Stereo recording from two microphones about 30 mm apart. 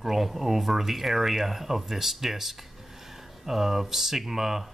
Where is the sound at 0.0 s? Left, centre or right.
Centre.